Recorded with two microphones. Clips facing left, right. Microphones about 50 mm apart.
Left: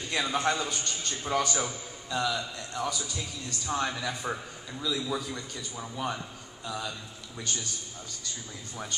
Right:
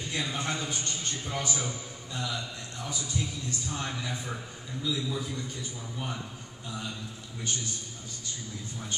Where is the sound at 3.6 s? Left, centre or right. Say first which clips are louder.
Left 8 dB; left.